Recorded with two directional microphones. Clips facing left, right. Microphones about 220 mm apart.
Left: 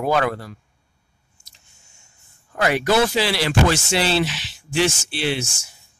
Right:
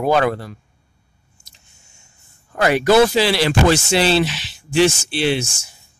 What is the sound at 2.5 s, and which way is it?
Speech, 40° right (ahead or behind).